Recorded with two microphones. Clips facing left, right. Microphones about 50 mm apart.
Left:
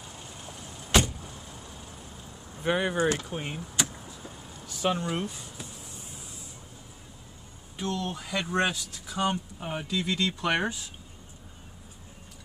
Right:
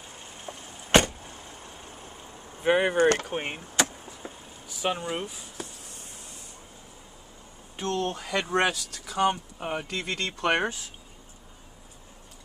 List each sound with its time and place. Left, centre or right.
0.9 s vehicle: right
2.6 s speech: right
3.0 s speech: right
4.6 s speech: centre
7.7 s speech: right
9.3 s speech: right
9.8 s speech: right